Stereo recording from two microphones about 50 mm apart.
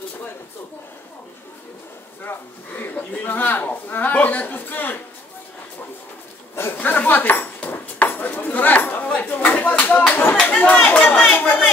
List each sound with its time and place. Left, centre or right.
2.2 s a man's voice: left
2.9 s a man's voice: left
6.5 s a sound: left
6.8 s dishes: left
9.1 s a sound: left
10.4 s chatter: left